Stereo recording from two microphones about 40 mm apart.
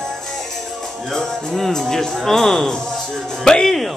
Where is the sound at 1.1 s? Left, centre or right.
Centre.